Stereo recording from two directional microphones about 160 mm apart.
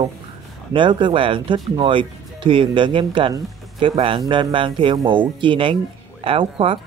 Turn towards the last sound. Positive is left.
turn(degrees=-35)  # may be behind; listen again after turning